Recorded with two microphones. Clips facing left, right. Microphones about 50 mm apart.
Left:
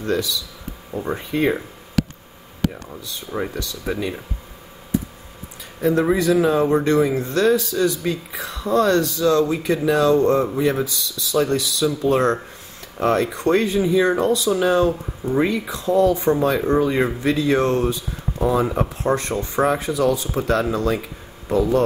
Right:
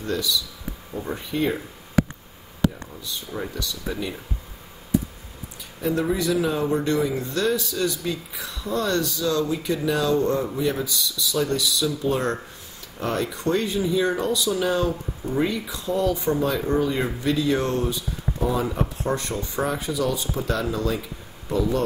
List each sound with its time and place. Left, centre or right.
0.0 s speech: left
1.1 s speech: left
3.3 s speech: left
5.8 s speech: left
12.0 s speech: left
12.9 s speech: left
17.9 s speech: left